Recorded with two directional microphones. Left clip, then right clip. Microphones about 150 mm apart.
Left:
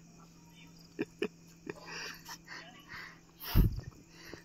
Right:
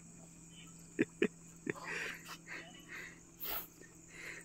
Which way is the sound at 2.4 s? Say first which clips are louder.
Left 1 dB; 40° right (ahead or behind).